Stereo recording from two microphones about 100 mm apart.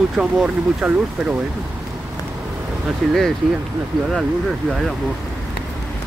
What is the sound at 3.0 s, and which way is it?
Speech, 5° left (ahead or behind).